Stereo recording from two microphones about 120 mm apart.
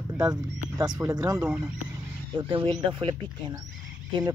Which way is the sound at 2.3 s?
45° right (ahead or behind).